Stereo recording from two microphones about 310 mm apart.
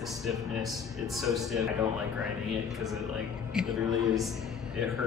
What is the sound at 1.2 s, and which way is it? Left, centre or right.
Speech, centre.